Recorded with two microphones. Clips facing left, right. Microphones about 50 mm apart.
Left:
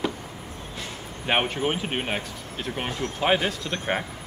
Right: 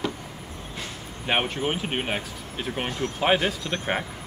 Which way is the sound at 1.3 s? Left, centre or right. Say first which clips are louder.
Left 1 dB; centre.